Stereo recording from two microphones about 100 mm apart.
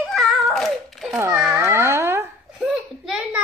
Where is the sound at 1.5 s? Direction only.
25° right (ahead or behind).